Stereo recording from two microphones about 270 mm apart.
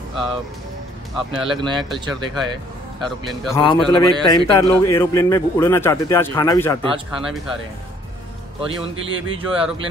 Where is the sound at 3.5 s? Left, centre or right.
Centre.